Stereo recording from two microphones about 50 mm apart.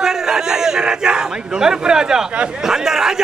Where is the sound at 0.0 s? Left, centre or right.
Centre.